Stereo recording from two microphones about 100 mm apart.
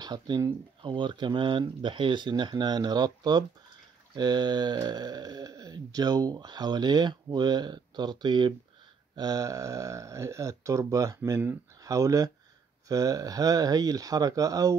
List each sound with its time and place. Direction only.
0.0 s speech: 45° right (ahead or behind)